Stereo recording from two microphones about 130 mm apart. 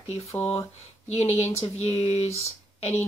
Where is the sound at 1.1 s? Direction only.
60° left (ahead or behind).